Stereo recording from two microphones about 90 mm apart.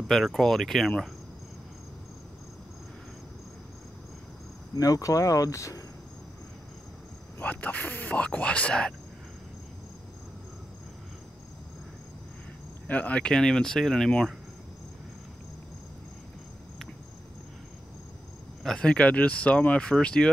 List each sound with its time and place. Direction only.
0.1 s speech: 5° left (ahead or behind)
4.7 s speech: 40° left (ahead or behind)
7.3 s speech: 15° left (ahead or behind)
12.8 s speech: 15° left (ahead or behind)
18.6 s speech: 10° left (ahead or behind)